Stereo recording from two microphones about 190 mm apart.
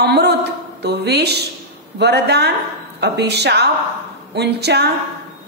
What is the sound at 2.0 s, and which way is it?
A woman's voice, 60° right (ahead or behind).